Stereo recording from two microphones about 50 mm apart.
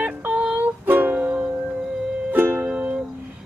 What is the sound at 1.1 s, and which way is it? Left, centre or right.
Music, right.